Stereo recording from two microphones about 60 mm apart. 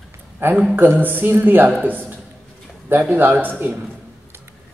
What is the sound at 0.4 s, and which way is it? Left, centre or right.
A man's voice, right.